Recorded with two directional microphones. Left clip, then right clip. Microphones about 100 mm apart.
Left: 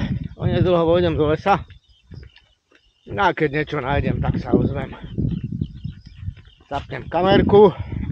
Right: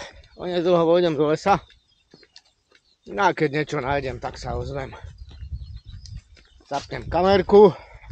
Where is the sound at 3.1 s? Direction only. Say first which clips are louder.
Left 2 dB; 10° right (ahead or behind).